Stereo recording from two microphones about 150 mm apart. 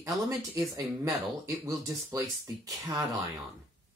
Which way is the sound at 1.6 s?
20° right (ahead or behind).